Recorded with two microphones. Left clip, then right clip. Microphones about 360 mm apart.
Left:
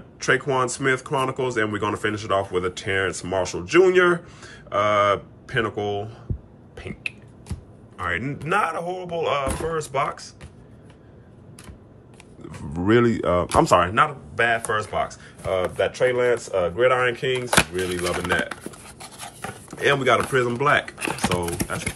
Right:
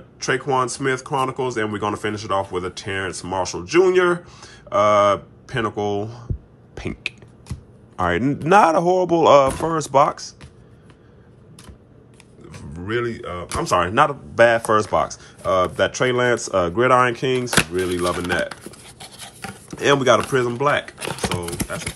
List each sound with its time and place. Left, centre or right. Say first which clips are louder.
0.2 s speech: right 1 dB; centre
6.7 s a sound: right 3 dB; centre
7.9 s speech: right 6 dB; centre
12.4 s speech: left 7 dB; centre
18.4 s a sound: right 2 dB; centre
21.6 s speech: even; centre